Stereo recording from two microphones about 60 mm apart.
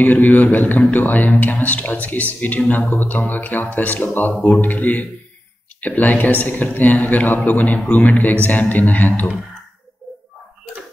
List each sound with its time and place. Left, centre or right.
0.0 s speech: left